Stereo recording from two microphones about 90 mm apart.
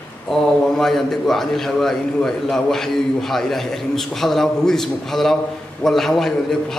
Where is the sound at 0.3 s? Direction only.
5° left (ahead or behind).